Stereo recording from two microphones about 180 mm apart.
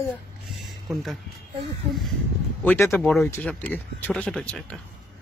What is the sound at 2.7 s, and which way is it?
Speech, 15° left (ahead or behind).